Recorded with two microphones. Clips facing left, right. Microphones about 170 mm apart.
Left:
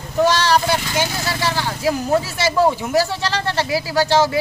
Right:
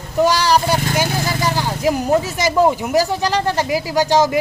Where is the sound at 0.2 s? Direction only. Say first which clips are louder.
Right 1 dB; 10° right (ahead or behind).